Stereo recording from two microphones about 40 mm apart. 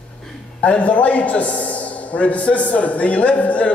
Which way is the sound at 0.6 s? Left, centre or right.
Left.